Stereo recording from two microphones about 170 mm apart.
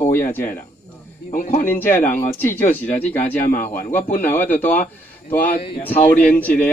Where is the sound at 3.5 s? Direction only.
55° left (ahead or behind).